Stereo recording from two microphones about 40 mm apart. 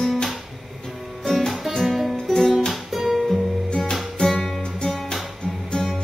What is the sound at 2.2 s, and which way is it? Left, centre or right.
Music, centre.